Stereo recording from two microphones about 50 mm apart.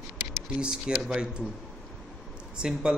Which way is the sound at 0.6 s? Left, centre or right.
Centre.